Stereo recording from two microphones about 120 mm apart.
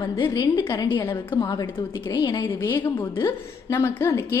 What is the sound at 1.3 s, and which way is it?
A woman's voice, 40° left (ahead or behind).